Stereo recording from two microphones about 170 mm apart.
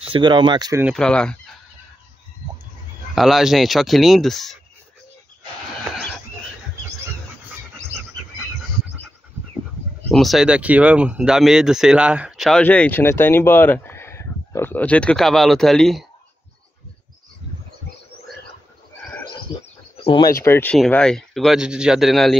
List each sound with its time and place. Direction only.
0.1 s speech: 30° right (ahead or behind)
0.9 s fowl: 5° left (ahead or behind)
3.2 s speech: centre (ahead or behind)
10.1 s speech: centre (ahead or behind)
20.0 s speech: 35° left (ahead or behind)
20.4 s speech: 15° left (ahead or behind)